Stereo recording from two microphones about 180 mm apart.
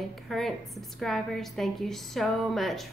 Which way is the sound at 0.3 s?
Centre (ahead or behind).